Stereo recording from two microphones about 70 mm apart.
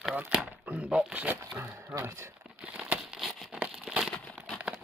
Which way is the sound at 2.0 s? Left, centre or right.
Right.